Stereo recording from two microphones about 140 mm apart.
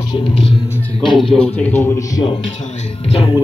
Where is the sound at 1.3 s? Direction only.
10° left (ahead or behind).